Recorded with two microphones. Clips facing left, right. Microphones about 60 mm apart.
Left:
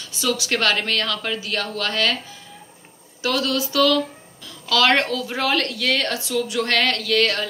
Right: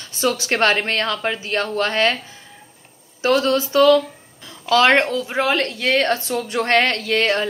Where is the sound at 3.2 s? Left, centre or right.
Right.